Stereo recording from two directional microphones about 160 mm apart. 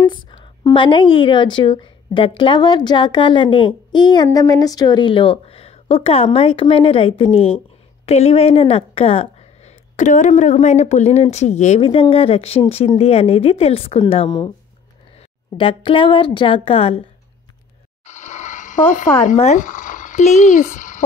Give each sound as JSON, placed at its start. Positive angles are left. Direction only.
{"t": 0.0, "sound": "a woman's voice", "side_deg": 30}
{"t": 9.9, "sound": "speech", "side_deg": 50}
{"t": 15.5, "sound": "speech", "side_deg": 35}
{"t": 18.0, "sound": "a sound", "side_deg": 45}
{"t": 19.2, "sound": "speech", "side_deg": 50}